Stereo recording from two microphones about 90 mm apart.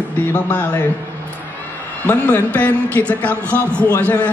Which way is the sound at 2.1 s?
20° left (ahead or behind).